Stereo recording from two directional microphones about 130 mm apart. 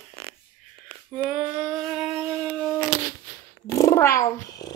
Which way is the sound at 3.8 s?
20° left (ahead or behind).